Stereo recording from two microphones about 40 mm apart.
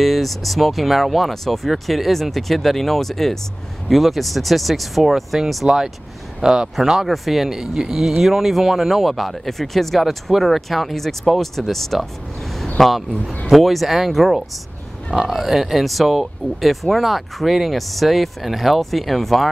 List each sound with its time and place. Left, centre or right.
0.0 s speech: centre
6.4 s speech: centre